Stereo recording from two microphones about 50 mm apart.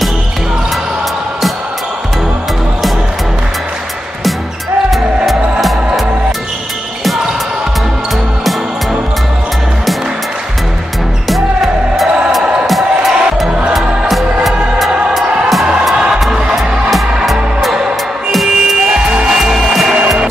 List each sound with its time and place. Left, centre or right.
4.9 s music: centre
11.2 s music: centre
15.2 s music: right; by 18.8 s centre
19.2 s rub: centre
19.6 s music: centre